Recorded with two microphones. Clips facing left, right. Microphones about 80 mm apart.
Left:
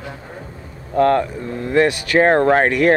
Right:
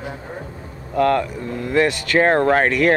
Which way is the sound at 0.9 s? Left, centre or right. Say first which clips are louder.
Left 2 dB; left.